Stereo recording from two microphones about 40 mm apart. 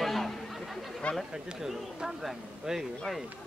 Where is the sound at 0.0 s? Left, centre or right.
Centre.